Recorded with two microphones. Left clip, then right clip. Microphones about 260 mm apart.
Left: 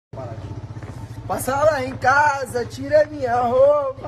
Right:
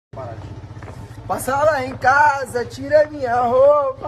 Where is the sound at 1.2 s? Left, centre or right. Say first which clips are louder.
Right 1 dB; centre.